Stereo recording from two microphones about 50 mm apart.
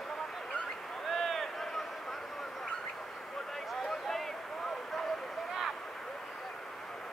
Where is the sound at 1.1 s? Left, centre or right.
Centre.